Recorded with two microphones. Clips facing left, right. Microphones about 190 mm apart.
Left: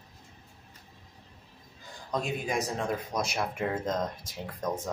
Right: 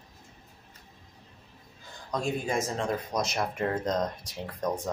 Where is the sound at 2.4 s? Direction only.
15° left (ahead or behind).